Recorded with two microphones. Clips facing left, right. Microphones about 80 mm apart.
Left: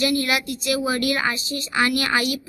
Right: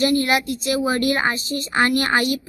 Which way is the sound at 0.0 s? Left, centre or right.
Right.